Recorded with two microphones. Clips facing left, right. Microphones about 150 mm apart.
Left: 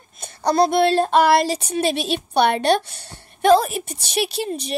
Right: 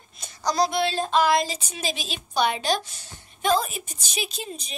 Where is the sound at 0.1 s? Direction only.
55° left (ahead or behind).